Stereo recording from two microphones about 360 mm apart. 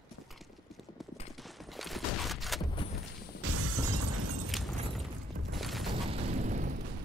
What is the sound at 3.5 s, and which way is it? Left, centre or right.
Shatter, right.